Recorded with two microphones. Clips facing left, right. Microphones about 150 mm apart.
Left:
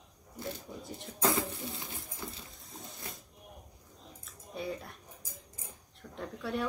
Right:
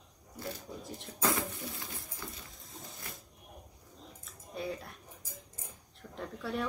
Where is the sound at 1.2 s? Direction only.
25° left (ahead or behind).